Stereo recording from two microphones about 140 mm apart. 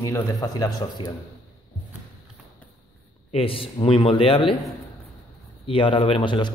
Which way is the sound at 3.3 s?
40° left (ahead or behind).